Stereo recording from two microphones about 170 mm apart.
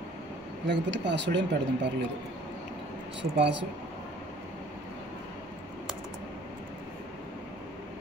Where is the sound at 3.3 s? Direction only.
90° right.